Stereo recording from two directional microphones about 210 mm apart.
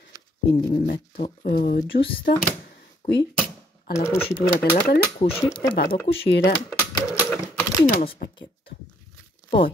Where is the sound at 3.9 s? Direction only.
15° left (ahead or behind).